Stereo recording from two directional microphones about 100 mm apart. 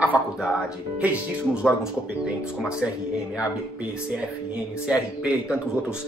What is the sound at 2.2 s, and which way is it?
Speech, 5° right (ahead or behind).